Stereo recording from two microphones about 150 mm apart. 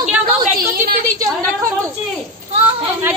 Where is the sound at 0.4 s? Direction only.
90° right.